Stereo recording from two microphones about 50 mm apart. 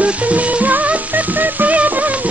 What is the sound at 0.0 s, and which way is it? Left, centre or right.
Music, right.